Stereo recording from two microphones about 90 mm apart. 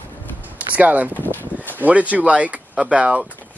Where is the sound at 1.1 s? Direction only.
20° left (ahead or behind).